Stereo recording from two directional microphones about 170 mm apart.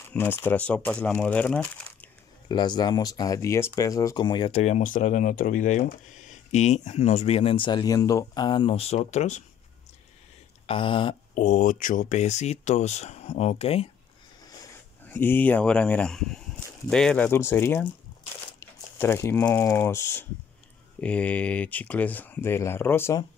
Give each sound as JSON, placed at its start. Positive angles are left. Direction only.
{"t": 0.0, "sound": "speech", "side_deg": 10}
{"t": 2.4, "sound": "speech", "side_deg": 25}
{"t": 10.7, "sound": "speech", "side_deg": 30}
{"t": 11.3, "sound": "speech", "side_deg": 50}
{"t": 15.0, "sound": "speech", "side_deg": 10}